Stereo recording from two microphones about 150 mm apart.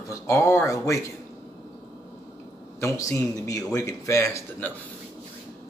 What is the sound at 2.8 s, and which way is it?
Speech, 20° left (ahead or behind).